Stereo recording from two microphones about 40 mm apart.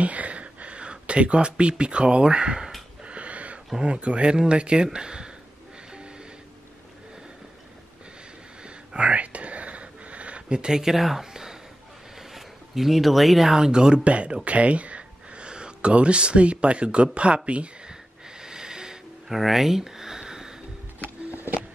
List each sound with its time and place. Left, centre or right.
0.0 s speech: right
3.0 s wheeze: right
3.8 s speech: right
8.6 s whispering: right; by 11.5 s centre
12.2 s speech: centre; by 17.6 s right
18.4 s music: centre
19.3 s a sound: centre